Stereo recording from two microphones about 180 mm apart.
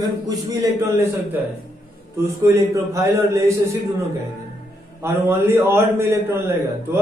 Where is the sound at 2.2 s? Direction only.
15° right (ahead or behind).